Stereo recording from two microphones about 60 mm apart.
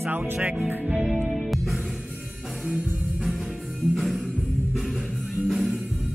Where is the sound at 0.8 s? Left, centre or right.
Centre.